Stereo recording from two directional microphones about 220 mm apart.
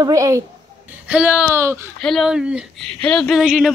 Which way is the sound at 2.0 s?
Centre (ahead or behind).